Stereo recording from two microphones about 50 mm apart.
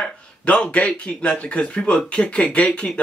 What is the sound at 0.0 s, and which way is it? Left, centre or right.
Speech, left.